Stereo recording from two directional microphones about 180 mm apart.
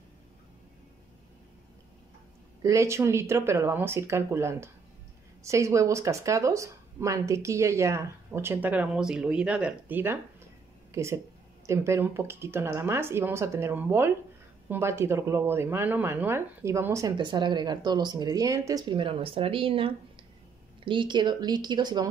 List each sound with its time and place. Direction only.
2.6 s speech: 15° right (ahead or behind)